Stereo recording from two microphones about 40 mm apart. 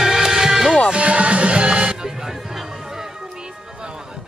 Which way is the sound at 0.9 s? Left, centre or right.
Right.